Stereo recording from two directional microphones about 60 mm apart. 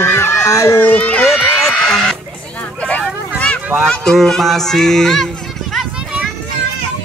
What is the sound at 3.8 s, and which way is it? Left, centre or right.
Speech, centre.